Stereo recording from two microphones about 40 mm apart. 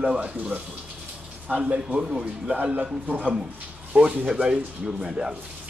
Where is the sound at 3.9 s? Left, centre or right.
Centre.